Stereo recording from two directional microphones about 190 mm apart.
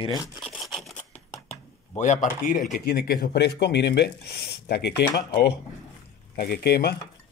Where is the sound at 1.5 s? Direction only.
40° left (ahead or behind); by 4.9 s 60° left (ahead or behind).